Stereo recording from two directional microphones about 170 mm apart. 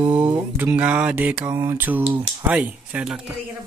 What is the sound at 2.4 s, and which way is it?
Speech, 10° right (ahead or behind).